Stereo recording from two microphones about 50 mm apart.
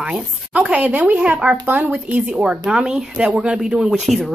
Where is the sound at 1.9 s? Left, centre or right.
Right.